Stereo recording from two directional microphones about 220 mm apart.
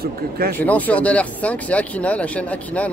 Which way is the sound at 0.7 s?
5° left (ahead or behind).